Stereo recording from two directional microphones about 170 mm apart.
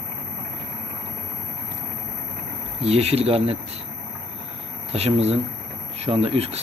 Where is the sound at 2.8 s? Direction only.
35° right (ahead or behind).